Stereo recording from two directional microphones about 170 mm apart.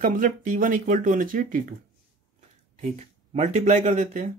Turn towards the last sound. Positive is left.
turn(degrees=-50)  # may be behind; listen again after turning